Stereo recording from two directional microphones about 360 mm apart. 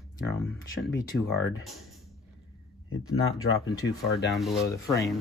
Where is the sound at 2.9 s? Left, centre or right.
Left.